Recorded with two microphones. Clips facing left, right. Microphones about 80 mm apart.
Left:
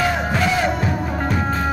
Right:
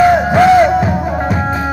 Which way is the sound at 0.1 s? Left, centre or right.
Right.